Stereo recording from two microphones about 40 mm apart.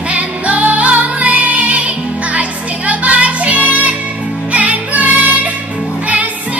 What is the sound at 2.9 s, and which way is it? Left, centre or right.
Music, right.